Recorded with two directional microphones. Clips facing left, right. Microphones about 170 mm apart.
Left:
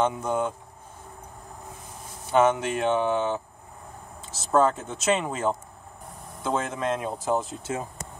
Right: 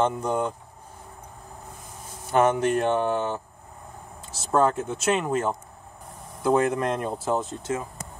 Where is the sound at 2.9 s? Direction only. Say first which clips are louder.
Even; 10° right (ahead or behind).